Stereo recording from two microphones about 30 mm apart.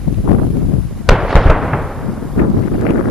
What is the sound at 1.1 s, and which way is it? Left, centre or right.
Fireworks, centre.